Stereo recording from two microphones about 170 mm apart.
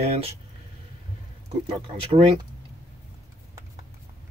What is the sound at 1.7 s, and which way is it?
Speech, 35° right (ahead or behind).